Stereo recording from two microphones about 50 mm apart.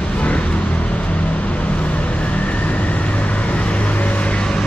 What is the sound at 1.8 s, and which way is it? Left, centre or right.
Vehicle, left.